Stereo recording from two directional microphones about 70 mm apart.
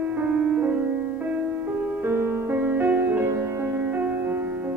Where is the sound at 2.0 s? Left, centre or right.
Right.